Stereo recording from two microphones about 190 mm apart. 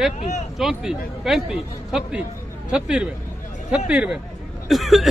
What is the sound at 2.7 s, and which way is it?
Speech, 5° right (ahead or behind).